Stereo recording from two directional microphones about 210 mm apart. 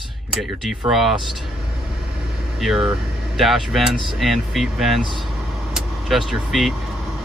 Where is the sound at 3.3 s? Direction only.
Centre (ahead or behind).